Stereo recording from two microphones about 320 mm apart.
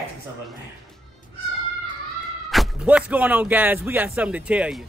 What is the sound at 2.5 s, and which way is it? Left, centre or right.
Speech, centre.